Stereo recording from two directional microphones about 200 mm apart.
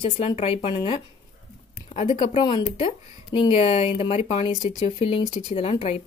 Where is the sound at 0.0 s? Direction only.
25° left (ahead or behind).